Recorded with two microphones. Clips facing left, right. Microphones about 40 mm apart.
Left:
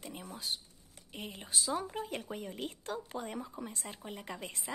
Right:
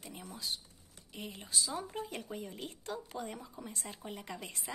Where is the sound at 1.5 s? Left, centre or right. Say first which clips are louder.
Left 3 dB; centre.